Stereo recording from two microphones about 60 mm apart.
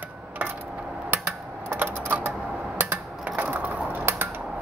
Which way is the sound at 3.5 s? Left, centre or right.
Right.